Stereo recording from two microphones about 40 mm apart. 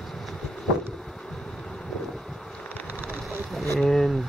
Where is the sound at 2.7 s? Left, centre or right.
Left.